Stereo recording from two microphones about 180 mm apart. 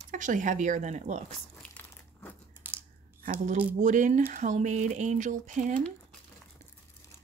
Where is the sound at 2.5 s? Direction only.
10° right (ahead or behind).